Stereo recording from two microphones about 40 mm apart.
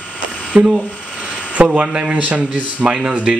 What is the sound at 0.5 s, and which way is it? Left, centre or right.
Speech, right.